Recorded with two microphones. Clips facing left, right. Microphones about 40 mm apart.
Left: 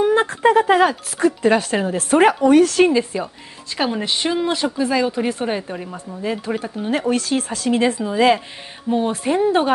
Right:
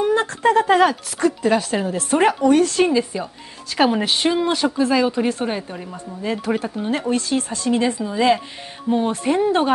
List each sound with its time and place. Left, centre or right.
0.0 s speech: centre
1.4 s speech: left
2.1 s speech: centre
3.7 s a woman's voice: centre
6.5 s speech: centre
6.9 s speech: centre
8.9 s speech: centre